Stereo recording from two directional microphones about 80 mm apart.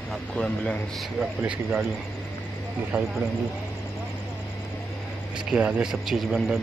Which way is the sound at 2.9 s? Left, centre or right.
Centre.